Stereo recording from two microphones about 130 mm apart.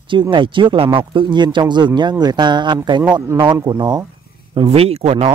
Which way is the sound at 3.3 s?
20° right (ahead or behind).